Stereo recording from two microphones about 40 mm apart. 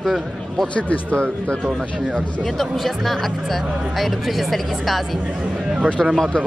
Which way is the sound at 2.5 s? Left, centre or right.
Centre.